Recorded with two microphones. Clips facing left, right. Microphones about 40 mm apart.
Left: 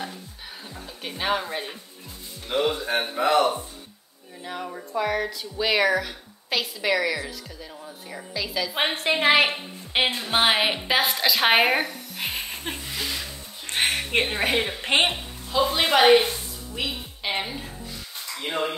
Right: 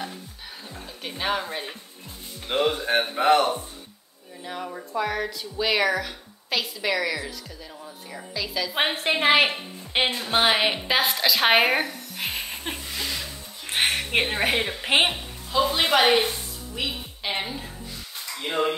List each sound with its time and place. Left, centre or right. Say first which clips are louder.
1.0 s speech: left 1 dB; centre
2.4 s speech: right 1 dB; right
4.5 s a woman's voice: even; centre